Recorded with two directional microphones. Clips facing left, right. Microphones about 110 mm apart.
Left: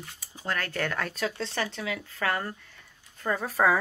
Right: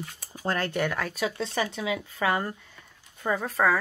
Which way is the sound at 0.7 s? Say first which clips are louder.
Right 3 dB; 10° right (ahead or behind).